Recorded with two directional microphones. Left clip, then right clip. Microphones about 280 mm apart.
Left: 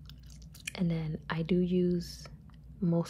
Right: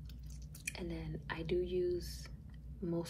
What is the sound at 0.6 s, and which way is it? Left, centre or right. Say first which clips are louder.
Speech: left 7 dB; centre.